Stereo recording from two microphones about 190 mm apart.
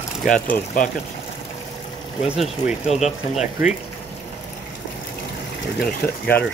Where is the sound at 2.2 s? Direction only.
Centre (ahead or behind).